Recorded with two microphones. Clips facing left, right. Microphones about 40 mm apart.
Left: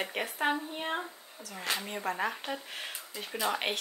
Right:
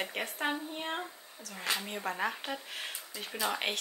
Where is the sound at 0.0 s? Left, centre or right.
Centre.